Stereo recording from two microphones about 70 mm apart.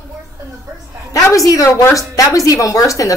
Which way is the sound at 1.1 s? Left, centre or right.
Left.